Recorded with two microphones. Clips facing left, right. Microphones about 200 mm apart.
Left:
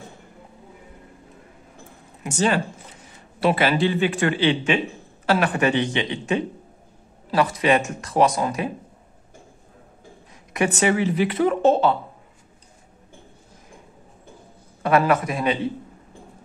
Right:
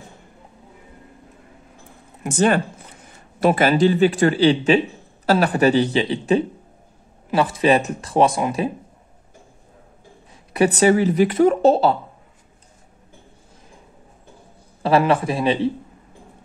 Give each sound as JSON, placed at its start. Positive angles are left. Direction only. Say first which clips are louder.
{"t": 2.2, "sound": "a man's voice", "louder": "right 4 dB", "side_deg": -50}
{"t": 10.5, "sound": "a man's voice", "louder": "right 5 dB", "side_deg": -35}
{"t": 14.8, "sound": "speech", "louder": "right 2 dB", "side_deg": -30}